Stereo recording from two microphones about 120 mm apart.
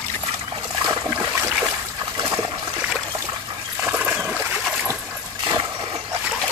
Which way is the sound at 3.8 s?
10° right (ahead or behind).